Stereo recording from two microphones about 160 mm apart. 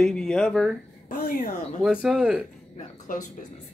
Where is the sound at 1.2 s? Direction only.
65° left (ahead or behind).